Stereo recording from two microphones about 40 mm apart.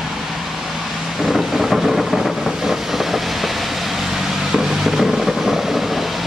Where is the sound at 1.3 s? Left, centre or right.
Centre.